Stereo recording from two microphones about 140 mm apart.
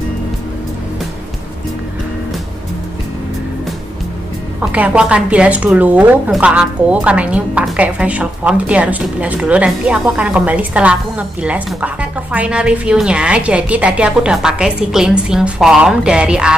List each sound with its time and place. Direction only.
4.6 s a woman's voice: 10° right (ahead or behind)